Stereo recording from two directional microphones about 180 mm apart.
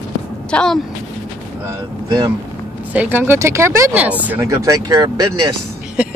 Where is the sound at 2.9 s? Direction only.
10° right (ahead or behind).